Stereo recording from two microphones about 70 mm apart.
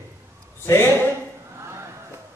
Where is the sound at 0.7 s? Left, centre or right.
Left.